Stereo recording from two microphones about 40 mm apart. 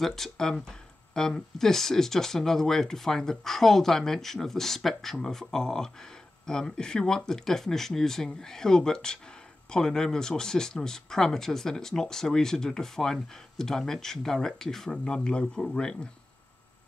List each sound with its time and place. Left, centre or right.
0.0 s speech: centre
14.9 s speech: left